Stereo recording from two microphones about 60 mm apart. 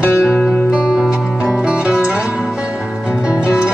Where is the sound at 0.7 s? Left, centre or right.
Centre.